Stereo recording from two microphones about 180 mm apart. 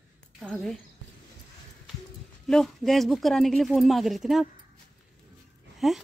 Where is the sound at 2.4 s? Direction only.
Centre (ahead or behind).